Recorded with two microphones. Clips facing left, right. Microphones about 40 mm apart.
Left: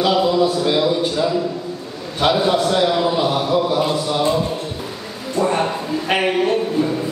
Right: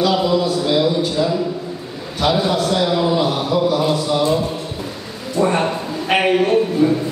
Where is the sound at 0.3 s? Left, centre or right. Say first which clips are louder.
Even; left.